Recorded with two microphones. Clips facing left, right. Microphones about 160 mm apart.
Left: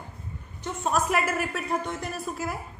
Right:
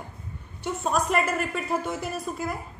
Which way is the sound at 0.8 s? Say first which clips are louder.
Even; 5° left (ahead or behind).